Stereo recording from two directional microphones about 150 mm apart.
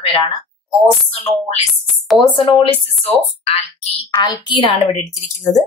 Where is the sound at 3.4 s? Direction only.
45° left (ahead or behind).